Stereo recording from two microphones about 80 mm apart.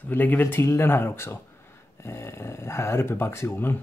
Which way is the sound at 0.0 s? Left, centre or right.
Left.